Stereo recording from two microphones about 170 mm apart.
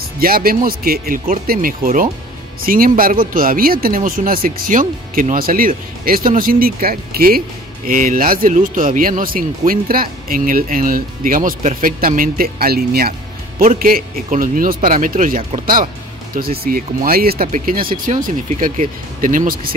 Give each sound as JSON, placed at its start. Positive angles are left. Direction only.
{"t": 0.2, "sound": "a man's voice", "side_deg": -60}